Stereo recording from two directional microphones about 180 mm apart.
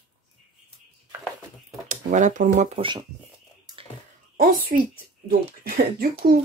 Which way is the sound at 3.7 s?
20° right (ahead or behind).